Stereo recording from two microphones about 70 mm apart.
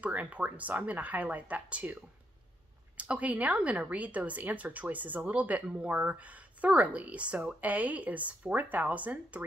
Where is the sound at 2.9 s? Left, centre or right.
Right.